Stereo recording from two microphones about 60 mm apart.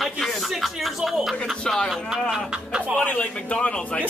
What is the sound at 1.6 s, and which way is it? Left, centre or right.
Speech, centre.